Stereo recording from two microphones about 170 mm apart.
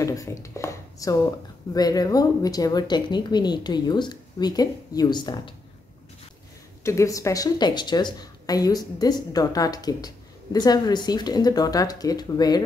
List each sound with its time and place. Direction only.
0.0 s speech: 20° left (ahead or behind)
6.8 s speech: 15° left (ahead or behind)